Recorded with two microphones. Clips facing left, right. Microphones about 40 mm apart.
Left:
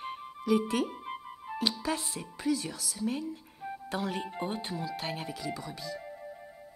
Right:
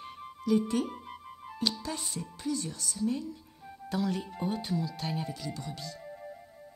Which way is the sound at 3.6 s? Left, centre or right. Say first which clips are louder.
Right 2 dB; left.